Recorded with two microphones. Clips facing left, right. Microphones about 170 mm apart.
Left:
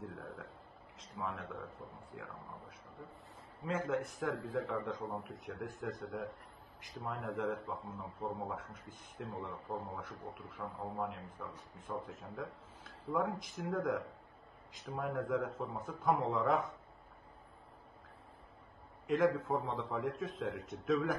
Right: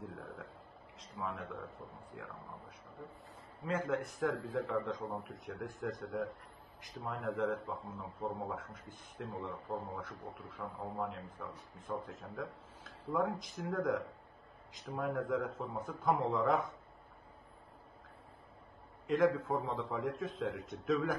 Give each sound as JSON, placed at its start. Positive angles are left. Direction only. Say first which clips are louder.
{"t": 0.0, "sound": "a sound", "louder": "even", "side_deg": 0}
{"t": 0.9, "sound": "a man's voice", "louder": "even", "side_deg": 0}
{"t": 3.6, "sound": "a man's voice", "louder": "even", "side_deg": 0}
{"t": 19.0, "sound": "a man's voice", "louder": "right 1 dB", "side_deg": 5}